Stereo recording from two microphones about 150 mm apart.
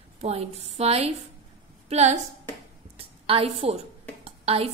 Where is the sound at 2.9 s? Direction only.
40° right (ahead or behind).